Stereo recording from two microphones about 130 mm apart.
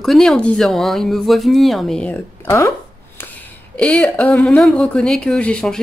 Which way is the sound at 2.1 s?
20° left (ahead or behind).